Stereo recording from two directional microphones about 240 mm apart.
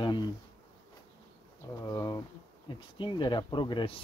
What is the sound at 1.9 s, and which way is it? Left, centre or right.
Speech, centre.